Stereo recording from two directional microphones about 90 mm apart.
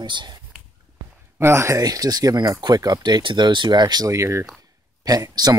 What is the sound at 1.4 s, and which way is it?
Speech, 30° right (ahead or behind).